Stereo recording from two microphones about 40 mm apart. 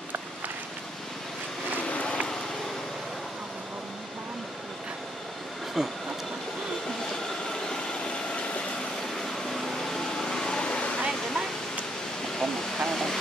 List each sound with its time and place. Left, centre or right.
1.9 s a sound: left
5.8 s train: centre
7.6 s vehicle: left
9.3 s vehicle: centre; by 11.0 s left
11.0 s a sound: centre
12.4 s vehicle: centre